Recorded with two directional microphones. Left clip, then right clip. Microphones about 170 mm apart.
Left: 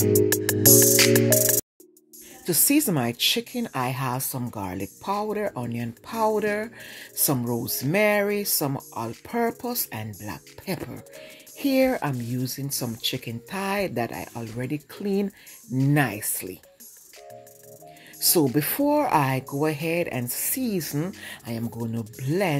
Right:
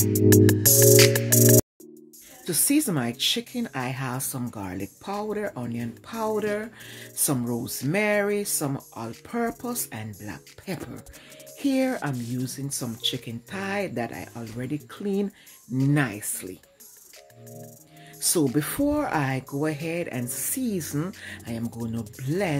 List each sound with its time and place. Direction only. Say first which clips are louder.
0.0 s music: right 2 dB; centre (ahead or behind)
2.4 s a woman's voice: left 2 dB; 20° left (ahead or behind)
12.1 s speech: left 1 dB; centre (ahead or behind)
12.4 s a woman's voice: left 2 dB; 15° left (ahead or behind)
18.5 s speech: left 2 dB; 15° left (ahead or behind)
21.6 s speech: left 1 dB; centre (ahead or behind)
22.2 s speech: left 2 dB; 20° left (ahead or behind)